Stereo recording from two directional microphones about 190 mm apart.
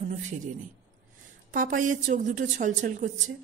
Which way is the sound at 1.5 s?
45° right (ahead or behind).